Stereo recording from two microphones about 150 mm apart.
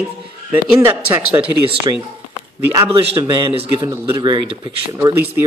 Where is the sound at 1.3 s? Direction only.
35° right (ahead or behind).